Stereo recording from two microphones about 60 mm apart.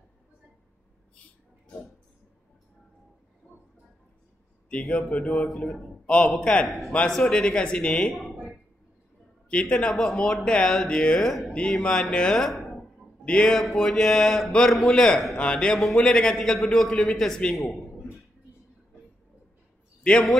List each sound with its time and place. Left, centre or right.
1.1 s a sound: centre
5.1 s a man's voice: centre
7.1 s a man's voice: centre
9.5 s a man's voice: centre
9.8 s a man's voice: centre
11.2 s speech: centre
11.8 s a man's voice: centre
12.4 s a sound: centre
13.2 s speech: left
13.5 s a man's voice: centre
20.0 s a man's voice: centre